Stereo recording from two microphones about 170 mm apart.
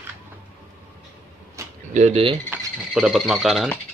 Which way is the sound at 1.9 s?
45° right (ahead or behind).